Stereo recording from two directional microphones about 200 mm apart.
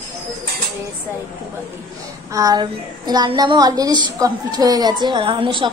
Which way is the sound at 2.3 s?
20° right (ahead or behind).